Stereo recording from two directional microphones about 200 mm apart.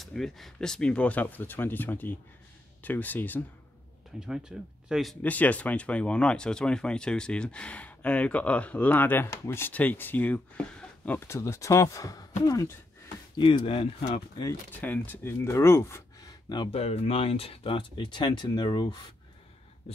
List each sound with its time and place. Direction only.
0.0 s speech: centre (ahead or behind)
4.2 s speech: 5° right (ahead or behind); by 14.2 s 30° left (ahead or behind)
14.4 s speech: 10° left (ahead or behind)